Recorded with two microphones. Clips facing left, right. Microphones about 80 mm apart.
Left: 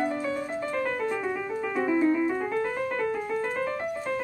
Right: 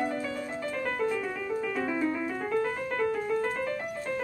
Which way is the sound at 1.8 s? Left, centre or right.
Left.